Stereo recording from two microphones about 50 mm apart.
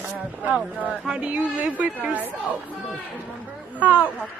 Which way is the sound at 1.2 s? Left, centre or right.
Right.